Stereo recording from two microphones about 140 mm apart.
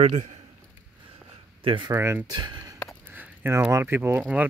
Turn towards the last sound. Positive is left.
turn(degrees=-10)  # may be behind; listen again after turning